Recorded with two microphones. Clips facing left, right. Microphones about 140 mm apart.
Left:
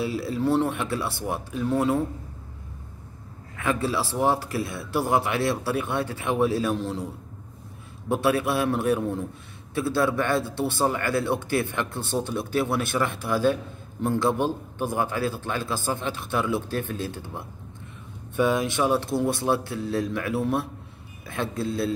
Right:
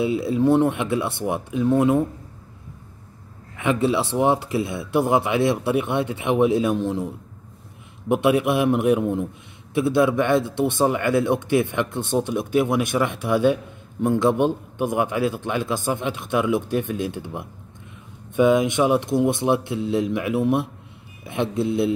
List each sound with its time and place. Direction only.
0.0 s a man's voice: 20° right (ahead or behind)
3.5 s speech: 20° right (ahead or behind)
8.1 s a man's voice: 15° right (ahead or behind)